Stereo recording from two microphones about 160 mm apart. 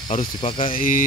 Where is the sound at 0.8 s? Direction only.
60° left (ahead or behind).